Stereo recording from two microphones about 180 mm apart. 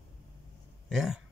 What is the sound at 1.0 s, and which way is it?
Speech, centre (ahead or behind).